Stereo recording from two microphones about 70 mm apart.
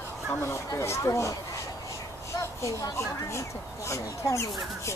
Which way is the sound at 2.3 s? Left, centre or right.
Left.